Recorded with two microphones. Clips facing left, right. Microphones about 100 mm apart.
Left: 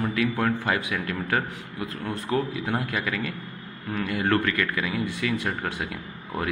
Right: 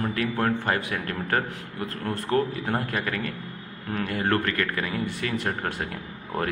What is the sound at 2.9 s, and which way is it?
A man's voice, 40° right (ahead or behind).